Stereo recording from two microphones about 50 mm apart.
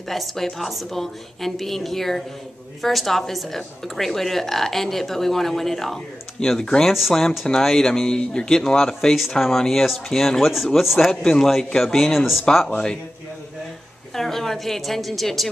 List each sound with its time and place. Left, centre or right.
0.1 s a woman's voice: centre
6.9 s a woman's voice: centre
7.4 s a woman's voice: centre
12.5 s speech: centre
14.1 s a woman's voice: centre